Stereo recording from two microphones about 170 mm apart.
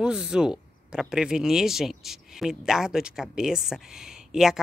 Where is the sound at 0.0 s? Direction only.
5° right (ahead or behind).